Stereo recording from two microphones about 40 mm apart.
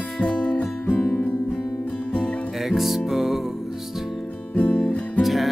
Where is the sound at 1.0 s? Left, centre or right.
Left.